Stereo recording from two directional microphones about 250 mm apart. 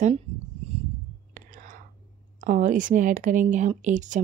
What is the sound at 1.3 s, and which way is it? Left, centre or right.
Whispering, right.